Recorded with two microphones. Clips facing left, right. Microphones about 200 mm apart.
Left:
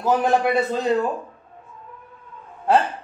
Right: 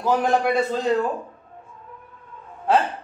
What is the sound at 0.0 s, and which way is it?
Speech, 5° left (ahead or behind).